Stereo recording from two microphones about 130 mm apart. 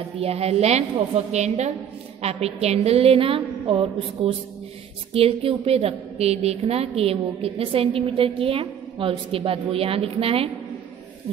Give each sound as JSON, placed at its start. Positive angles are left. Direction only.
{"t": 0.2, "sound": "a woman's voice", "side_deg": -50}